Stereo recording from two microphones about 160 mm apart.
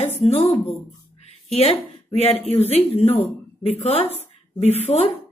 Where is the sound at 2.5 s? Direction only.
40° left (ahead or behind).